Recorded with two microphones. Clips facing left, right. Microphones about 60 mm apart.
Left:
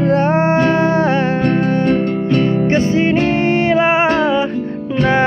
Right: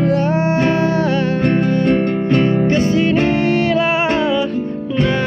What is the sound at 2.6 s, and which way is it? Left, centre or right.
Music, left.